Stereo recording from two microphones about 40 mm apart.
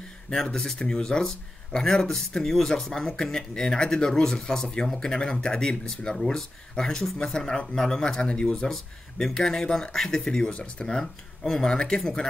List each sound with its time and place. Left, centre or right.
0.3 s speech: centre
6.1 s speech: centre
9.2 s speech: centre
10.5 s speech: left
10.9 s speech: centre